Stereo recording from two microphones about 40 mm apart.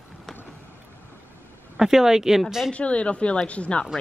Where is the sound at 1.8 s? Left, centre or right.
Centre.